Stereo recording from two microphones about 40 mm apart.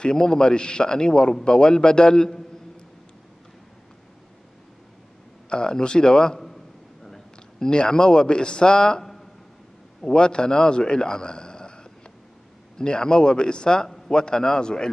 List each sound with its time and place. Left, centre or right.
0.0 s a man's voice: centre
5.5 s a man's voice: centre
10.0 s a man's voice: left
13.8 s a sound: centre
14.1 s a man's voice: centre